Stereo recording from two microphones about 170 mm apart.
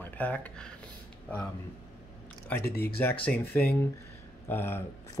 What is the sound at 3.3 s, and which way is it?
Speech, 10° left (ahead or behind).